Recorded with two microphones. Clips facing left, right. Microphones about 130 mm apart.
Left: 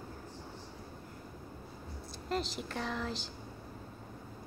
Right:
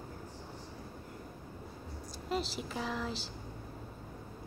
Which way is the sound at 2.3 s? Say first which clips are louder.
Even; 5° right (ahead or behind).